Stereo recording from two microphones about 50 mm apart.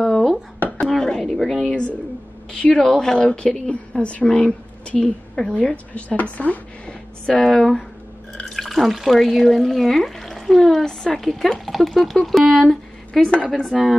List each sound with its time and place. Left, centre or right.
0.0 s a sound: centre
2.7 s a woman's voice: centre; by 7.0 s left
7.2 s a woman's voice: centre
10.9 s speech: centre
13.2 s a woman's voice: left
13.5 s a woman's voice: centre